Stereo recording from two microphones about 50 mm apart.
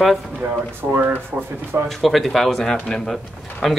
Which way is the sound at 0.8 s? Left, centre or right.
Right.